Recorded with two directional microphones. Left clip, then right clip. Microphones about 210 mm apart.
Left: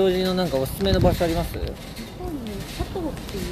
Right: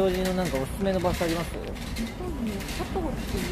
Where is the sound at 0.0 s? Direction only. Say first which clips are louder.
Left 4 dB; 50° left (ahead or behind).